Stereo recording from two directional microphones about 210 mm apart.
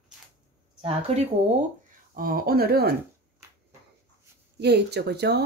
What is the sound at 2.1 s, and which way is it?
Speech, 45° right (ahead or behind).